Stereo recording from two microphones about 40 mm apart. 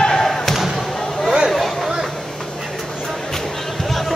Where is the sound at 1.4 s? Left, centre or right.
Centre.